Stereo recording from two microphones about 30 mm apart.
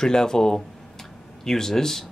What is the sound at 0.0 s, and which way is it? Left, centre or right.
Speech, left.